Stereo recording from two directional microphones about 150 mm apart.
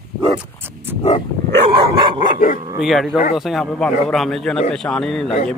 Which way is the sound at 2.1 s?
30° right (ahead or behind).